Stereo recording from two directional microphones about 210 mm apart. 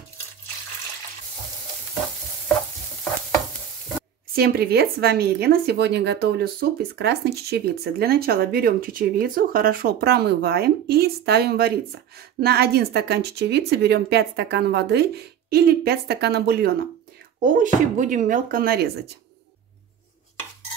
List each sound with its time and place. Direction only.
4.4 s a woman's voice: 50° right (ahead or behind)